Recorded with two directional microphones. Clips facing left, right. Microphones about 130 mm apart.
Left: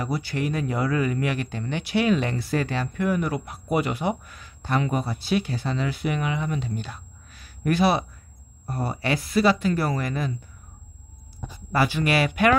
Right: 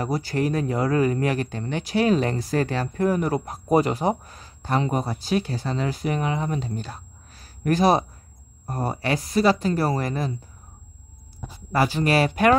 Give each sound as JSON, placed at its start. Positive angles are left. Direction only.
{"t": 0.0, "sound": "speech", "side_deg": -40}
{"t": 11.4, "sound": "speech", "side_deg": -35}